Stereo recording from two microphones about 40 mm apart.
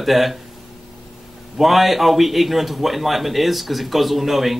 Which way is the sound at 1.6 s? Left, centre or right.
Centre.